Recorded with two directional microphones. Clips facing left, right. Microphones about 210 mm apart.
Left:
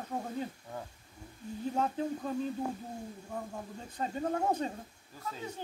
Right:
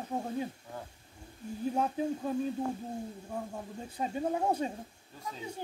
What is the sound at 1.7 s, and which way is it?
Speech, 10° right (ahead or behind).